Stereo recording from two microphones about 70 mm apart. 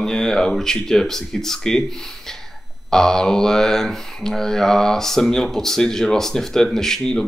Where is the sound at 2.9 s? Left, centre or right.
Centre.